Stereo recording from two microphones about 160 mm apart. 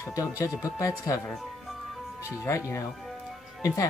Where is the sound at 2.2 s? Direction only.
20° left (ahead or behind).